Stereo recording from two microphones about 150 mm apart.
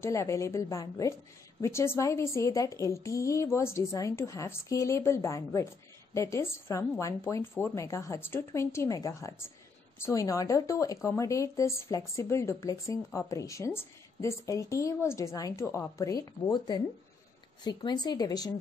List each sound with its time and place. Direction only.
0.0 s speech: 20° left (ahead or behind)